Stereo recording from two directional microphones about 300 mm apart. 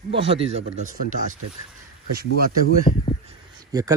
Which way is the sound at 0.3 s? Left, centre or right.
Centre.